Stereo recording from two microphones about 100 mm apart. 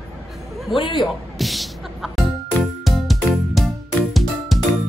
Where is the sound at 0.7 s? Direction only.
55° left (ahead or behind).